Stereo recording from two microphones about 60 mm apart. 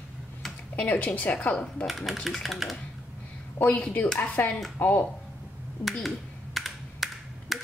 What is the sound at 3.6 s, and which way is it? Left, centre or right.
Speech, left.